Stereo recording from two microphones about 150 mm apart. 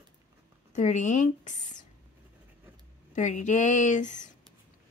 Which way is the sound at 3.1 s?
55° left (ahead or behind).